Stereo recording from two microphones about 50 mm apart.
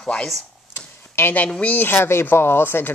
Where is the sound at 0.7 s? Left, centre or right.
Left.